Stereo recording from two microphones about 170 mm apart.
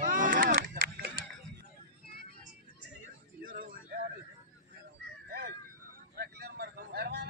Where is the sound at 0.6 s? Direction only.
60° right (ahead or behind).